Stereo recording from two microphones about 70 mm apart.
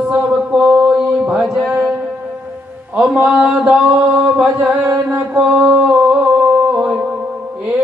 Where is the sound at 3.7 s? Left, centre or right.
Centre.